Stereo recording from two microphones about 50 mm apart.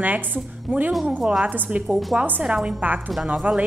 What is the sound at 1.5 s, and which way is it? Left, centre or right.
Speech, right.